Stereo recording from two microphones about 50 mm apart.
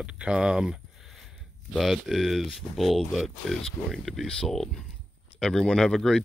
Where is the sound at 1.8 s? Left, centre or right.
Centre.